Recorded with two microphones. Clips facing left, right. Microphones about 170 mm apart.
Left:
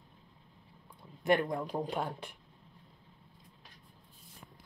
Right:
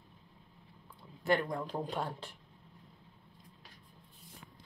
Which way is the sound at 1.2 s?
20° left (ahead or behind).